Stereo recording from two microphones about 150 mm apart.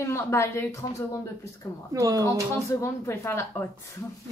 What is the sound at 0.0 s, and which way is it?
Speech, 20° left (ahead or behind).